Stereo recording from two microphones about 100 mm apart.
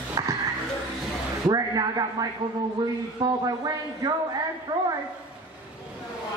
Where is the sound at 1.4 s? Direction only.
40° right (ahead or behind).